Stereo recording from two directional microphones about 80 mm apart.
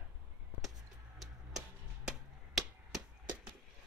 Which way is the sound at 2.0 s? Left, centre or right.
Centre.